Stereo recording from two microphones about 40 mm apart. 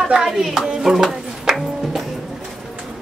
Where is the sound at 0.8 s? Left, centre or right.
Centre.